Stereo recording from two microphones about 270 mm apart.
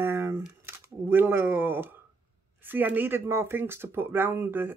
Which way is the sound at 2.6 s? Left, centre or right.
Centre.